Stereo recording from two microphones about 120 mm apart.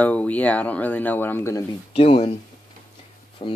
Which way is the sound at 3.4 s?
45° left (ahead or behind).